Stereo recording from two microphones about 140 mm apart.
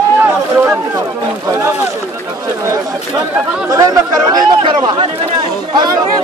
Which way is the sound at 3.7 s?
25° right (ahead or behind).